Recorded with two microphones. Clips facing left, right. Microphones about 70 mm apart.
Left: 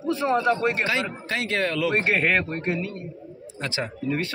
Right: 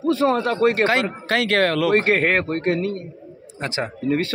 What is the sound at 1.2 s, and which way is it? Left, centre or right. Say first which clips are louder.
Speech: right 7 dB; right.